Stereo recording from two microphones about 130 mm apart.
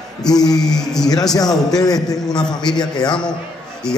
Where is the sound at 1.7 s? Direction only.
30° left (ahead or behind).